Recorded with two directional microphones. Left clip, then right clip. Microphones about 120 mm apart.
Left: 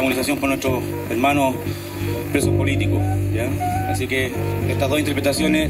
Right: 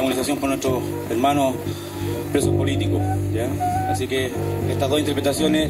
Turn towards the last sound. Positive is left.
turn(degrees=15)  # may be behind; listen again after turning